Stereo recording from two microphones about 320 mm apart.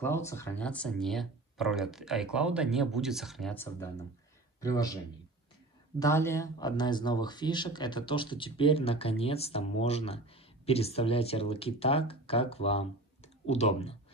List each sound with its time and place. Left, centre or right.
0.0 s a man's voice: centre